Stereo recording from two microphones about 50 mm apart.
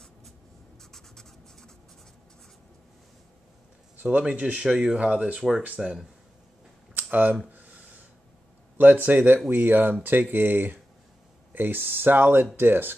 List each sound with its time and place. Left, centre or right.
0.9 s writing: centre
3.9 s speech: right
5.8 s speech: centre
7.0 s a sound: right
8.7 s speech: right